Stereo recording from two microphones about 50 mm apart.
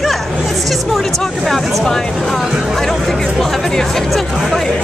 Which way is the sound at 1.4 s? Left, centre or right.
Centre.